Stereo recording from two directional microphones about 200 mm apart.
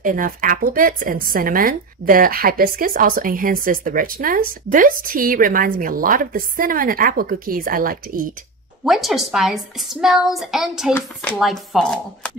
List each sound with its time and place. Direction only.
0.0 s speech: 40° right (ahead or behind)
8.8 s a woman's voice: centre (ahead or behind)